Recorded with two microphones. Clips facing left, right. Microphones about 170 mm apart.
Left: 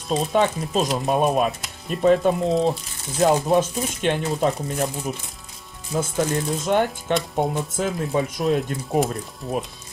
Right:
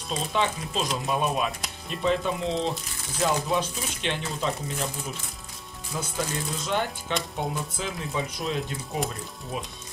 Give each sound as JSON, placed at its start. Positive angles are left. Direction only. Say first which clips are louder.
{"t": 0.1, "sound": "speech", "louder": "left 7 dB", "side_deg": 45}